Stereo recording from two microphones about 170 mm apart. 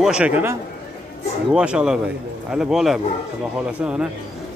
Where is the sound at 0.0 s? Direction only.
5° right (ahead or behind).